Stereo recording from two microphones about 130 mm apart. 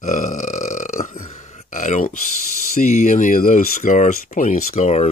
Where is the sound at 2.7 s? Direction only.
65° left (ahead or behind).